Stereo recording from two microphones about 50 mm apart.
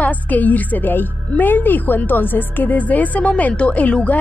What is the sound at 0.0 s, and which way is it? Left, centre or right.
Speech, left.